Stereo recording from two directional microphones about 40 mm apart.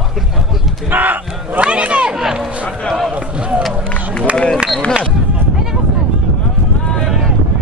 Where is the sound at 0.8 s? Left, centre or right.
Right.